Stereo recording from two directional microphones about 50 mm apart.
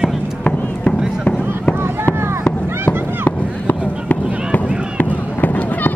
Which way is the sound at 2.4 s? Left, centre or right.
Left.